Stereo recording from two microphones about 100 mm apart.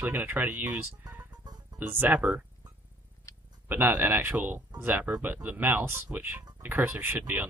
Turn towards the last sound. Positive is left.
turn(degrees=-20)  # may be behind; listen again after turning